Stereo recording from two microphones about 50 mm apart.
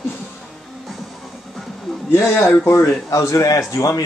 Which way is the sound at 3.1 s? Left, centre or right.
Left.